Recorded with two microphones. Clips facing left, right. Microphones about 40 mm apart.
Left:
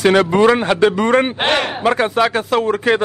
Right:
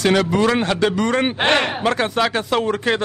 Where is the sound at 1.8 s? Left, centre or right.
Centre.